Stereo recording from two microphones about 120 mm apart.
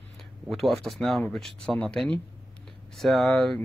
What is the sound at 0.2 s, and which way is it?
Speech, centre (ahead or behind).